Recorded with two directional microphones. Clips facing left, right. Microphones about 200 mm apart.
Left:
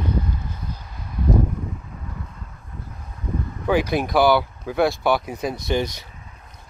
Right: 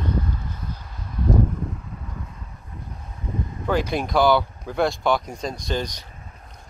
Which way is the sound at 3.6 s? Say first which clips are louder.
Left 3 dB; 10° left (ahead or behind).